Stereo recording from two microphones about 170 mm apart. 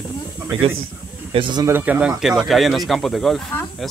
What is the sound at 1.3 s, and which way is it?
Speech, 30° right (ahead or behind).